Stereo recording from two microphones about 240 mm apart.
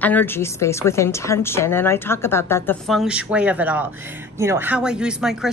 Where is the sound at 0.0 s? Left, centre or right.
Centre.